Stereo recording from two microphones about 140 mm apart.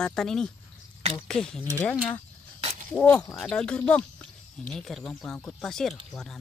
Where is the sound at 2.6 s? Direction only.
60° right (ahead or behind).